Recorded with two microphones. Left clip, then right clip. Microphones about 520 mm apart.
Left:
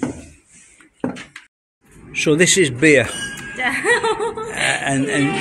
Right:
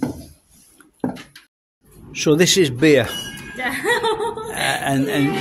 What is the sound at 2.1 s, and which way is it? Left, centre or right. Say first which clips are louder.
A man's voice: left 1 dB; right.